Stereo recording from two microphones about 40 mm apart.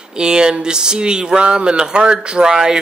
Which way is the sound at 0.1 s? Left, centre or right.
Centre.